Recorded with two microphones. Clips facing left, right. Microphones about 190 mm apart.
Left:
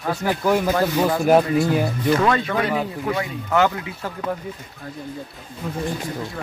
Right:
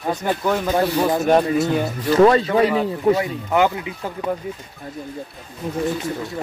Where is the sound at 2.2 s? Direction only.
30° right (ahead or behind).